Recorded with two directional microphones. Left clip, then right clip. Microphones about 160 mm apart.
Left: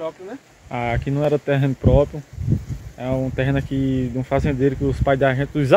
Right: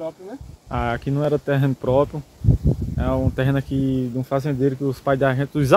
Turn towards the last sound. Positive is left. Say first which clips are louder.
# left 1 dB
turn(degrees=-20)  # may be behind; listen again after turning